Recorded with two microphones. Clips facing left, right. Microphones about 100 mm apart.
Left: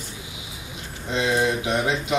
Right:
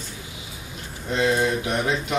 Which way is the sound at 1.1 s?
20° left (ahead or behind).